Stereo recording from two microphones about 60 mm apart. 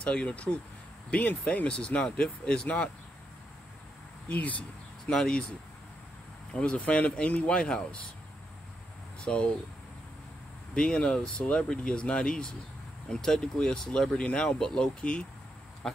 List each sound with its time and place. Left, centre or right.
0.0 s speech: centre
4.3 s speech: left
5.1 s speech: centre
6.5 s speech: centre
9.2 s speech: centre
10.7 s speech: centre